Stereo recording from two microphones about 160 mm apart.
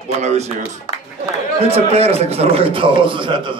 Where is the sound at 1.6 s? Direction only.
40° right (ahead or behind).